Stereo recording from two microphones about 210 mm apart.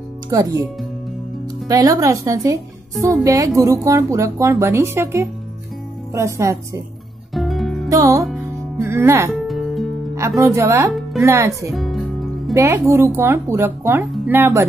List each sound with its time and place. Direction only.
0.3 s speech: 15° right (ahead or behind)
1.7 s speech: 15° right (ahead or behind)
7.3 s music: centre (ahead or behind)
7.9 s music: 15° right (ahead or behind)
8.2 s music: centre (ahead or behind)
8.7 s speech: 10° right (ahead or behind)
9.3 s music: centre (ahead or behind)
10.1 s speech: 15° right (ahead or behind)
11.7 s music: centre (ahead or behind)
12.5 s speech: 15° right (ahead or behind)